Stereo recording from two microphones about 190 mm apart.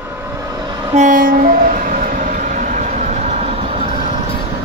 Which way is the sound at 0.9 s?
45° right (ahead or behind).